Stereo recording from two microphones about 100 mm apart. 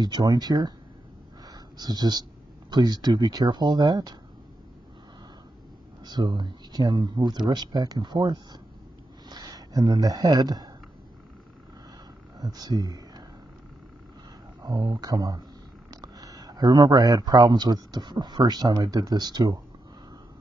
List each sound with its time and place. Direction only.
0.0 s speech: 45° right (ahead or behind)
1.4 s a sound: 40° right (ahead or behind)
2.7 s speech: 45° right (ahead or behind)
6.0 s speech: 45° right (ahead or behind)
12.4 s speech: 40° right (ahead or behind)
14.6 s speech: 45° right (ahead or behind)